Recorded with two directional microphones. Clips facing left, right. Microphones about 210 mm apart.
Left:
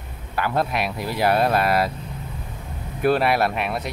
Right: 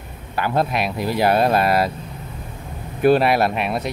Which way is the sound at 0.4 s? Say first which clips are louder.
Right 2 dB; 25° right (ahead or behind).